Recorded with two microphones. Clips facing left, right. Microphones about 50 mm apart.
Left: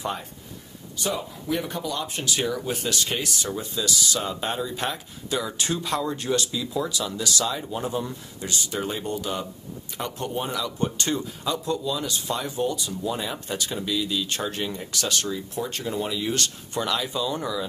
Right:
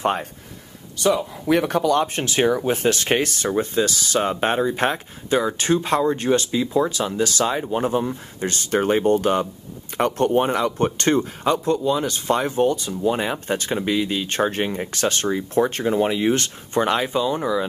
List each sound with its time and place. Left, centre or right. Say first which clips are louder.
0.0 s a man's voice: right 8 dB; right
0.9 s speech: right 9 dB; right
8.5 s speech: right 9 dB; right
15.3 s speech: right 10 dB; right
15.7 s speech: right 8 dB; right